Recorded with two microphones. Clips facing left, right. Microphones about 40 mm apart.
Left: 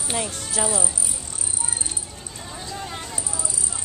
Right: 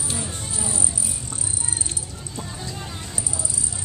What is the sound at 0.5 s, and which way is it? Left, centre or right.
Speech, left.